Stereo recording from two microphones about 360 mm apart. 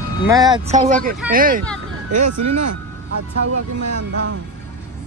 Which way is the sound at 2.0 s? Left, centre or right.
Right.